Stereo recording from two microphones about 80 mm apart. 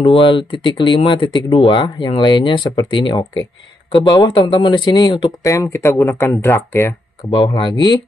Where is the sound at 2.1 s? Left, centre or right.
Left.